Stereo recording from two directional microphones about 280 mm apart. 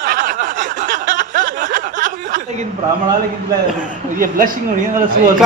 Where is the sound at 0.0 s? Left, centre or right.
Right.